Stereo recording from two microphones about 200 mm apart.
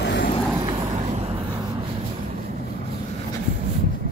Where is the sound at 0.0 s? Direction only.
60° left (ahead or behind).